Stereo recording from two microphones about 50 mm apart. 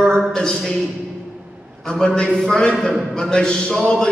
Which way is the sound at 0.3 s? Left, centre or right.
Centre.